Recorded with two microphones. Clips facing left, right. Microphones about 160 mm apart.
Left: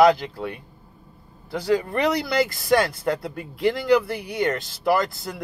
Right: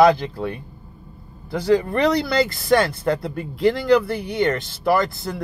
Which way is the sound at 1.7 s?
10° left (ahead or behind).